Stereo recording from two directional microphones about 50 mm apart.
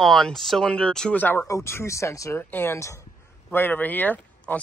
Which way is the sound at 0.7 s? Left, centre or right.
Left.